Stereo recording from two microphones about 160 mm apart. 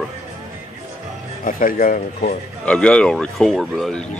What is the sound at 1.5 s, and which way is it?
Speech, 60° left (ahead or behind).